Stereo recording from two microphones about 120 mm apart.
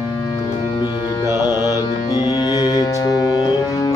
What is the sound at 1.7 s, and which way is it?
Music, 35° left (ahead or behind).